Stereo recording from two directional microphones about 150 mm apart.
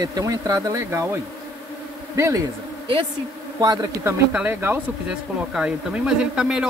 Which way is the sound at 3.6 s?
25° right (ahead or behind).